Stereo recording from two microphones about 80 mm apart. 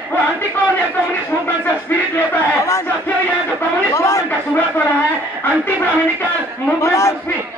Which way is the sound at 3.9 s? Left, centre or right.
Left.